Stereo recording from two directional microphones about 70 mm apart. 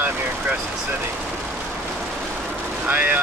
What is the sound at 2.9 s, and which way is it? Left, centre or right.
Speech, right.